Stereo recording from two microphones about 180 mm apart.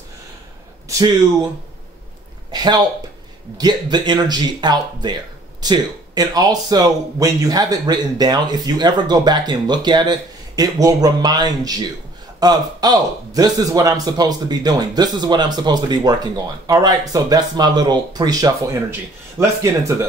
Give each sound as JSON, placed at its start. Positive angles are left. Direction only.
{"t": 0.8, "sound": "a man's voice", "side_deg": -20}
{"t": 2.5, "sound": "a sound", "side_deg": -25}
{"t": 3.5, "sound": "a man's voice", "side_deg": -25}